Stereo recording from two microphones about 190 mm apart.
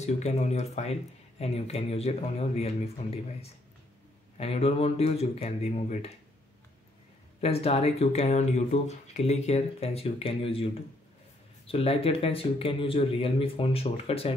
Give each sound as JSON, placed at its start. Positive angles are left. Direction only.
{"t": 0.0, "sound": "speech", "side_deg": 35}
{"t": 7.3, "sound": "speech", "side_deg": 30}